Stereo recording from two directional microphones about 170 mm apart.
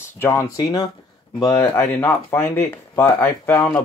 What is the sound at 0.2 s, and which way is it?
Speech, 15° left (ahead or behind).